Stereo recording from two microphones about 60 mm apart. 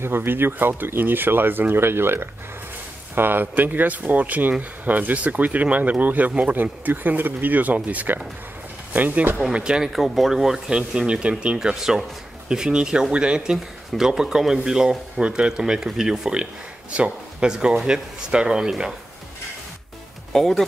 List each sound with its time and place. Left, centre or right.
0.0 s speech: right
9.5 s a man's voice: centre
9.9 s a man's voice: centre
20.3 s speech: centre